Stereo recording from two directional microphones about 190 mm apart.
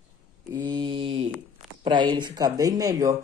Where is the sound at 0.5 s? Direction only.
20° right (ahead or behind).